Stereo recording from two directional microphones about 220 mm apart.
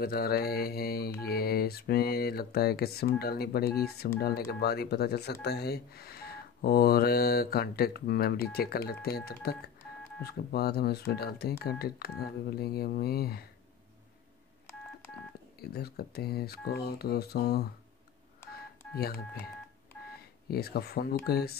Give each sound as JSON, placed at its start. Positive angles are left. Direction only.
{"t": 0.0, "sound": "speech", "side_deg": 45}
{"t": 15.6, "sound": "speech", "side_deg": 45}
{"t": 20.2, "sound": "speech", "side_deg": 45}